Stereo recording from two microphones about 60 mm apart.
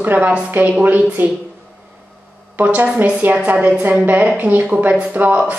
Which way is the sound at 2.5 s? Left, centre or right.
Right.